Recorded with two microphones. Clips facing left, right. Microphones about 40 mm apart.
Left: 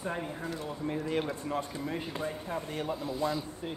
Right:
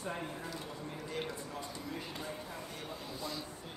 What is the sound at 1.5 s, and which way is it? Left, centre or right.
A man's voice, left.